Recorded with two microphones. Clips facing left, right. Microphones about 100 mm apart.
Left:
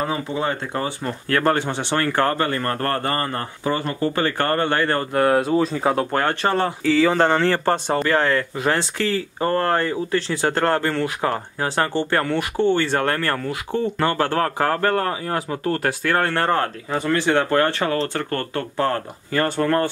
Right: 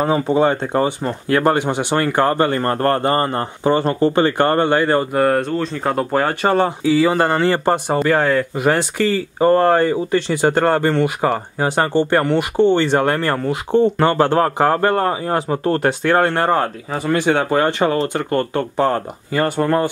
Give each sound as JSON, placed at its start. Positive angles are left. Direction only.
{"t": 0.0, "sound": "speech", "side_deg": -35}
{"t": 1.3, "sound": "speech", "side_deg": -15}
{"t": 2.3, "sound": "speech", "side_deg": -25}
{"t": 5.1, "sound": "speech", "side_deg": 0}